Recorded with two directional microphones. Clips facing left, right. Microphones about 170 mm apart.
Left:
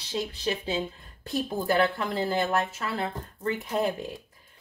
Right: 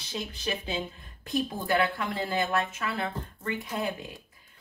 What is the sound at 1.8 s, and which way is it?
Speech, 30° left (ahead or behind).